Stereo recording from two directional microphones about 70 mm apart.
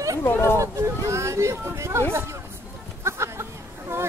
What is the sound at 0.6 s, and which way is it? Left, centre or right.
Speech, right.